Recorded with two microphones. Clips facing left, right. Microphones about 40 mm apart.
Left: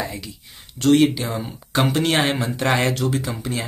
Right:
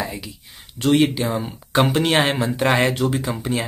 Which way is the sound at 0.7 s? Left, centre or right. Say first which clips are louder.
Left 1 dB; centre.